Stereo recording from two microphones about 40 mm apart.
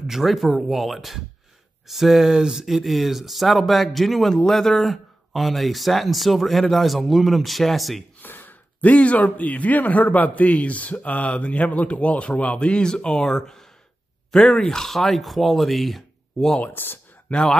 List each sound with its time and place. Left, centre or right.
0.0 s speech: centre
8.2 s gasp: left
8.8 s a man's voice: left
12.6 s speech: left; by 16.5 s centre
16.7 s speech: left
17.3 s speech: left